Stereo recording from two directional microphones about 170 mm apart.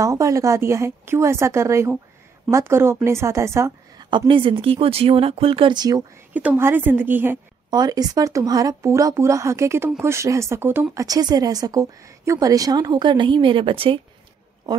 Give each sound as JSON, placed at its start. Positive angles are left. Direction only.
{"t": 0.0, "sound": "a woman's voice", "side_deg": -20}
{"t": 4.1, "sound": "speech", "side_deg": -30}
{"t": 6.3, "sound": "a woman's voice", "side_deg": -10}
{"t": 7.7, "sound": "a woman's voice", "side_deg": -25}